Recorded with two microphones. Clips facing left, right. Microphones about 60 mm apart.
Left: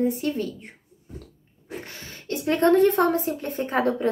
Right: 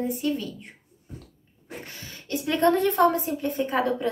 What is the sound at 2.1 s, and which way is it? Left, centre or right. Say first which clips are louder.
A woman's voice: left 2 dB; left.